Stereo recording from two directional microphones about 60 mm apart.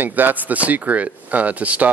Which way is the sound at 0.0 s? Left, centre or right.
Right.